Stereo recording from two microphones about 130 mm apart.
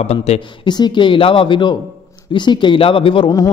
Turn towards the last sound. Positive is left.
turn(degrees=40)  # may be behind; listen again after turning